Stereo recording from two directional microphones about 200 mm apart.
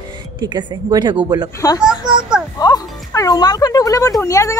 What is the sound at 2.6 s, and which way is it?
Speech, 20° left (ahead or behind).